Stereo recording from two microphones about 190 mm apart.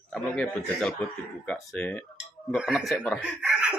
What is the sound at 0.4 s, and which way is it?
Speech, 5° left (ahead or behind).